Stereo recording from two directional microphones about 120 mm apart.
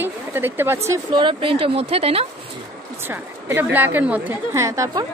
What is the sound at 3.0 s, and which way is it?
A woman's voice, 15° right (ahead or behind).